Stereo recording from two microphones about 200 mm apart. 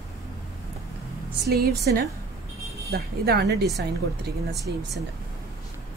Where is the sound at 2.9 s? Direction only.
50° right (ahead or behind).